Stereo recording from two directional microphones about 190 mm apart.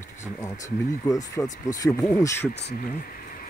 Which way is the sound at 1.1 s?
20° left (ahead or behind).